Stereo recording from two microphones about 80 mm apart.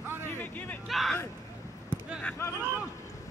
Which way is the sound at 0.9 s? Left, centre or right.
Centre.